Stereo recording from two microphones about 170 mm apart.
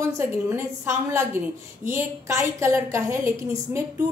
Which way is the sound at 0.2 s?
15° right (ahead or behind).